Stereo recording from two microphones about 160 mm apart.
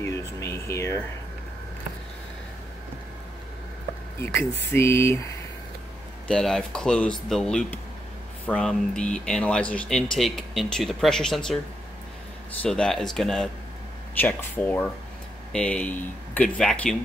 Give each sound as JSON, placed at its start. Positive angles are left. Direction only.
{"t": 0.0, "sound": "speech", "side_deg": 20}
{"t": 4.2, "sound": "speech", "side_deg": 15}
{"t": 6.2, "sound": "speech", "side_deg": 5}
{"t": 12.6, "sound": "speech", "side_deg": 5}